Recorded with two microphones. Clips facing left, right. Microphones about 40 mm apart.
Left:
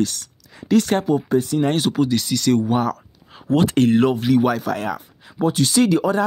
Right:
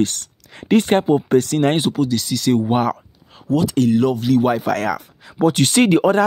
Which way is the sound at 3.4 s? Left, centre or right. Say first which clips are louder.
Even; left.